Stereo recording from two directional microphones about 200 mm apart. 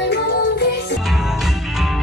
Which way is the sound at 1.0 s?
Centre (ahead or behind).